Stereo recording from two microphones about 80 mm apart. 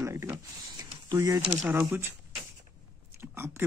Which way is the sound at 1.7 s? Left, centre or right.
Right.